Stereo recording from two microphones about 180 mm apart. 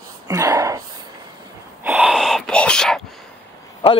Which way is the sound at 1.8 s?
10° right (ahead or behind).